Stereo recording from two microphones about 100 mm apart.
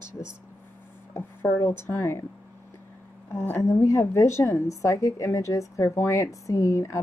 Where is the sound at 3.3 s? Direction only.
25° left (ahead or behind).